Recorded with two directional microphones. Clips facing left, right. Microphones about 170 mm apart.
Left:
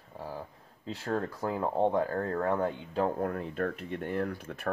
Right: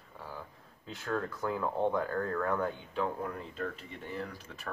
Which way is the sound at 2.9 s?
50° left (ahead or behind).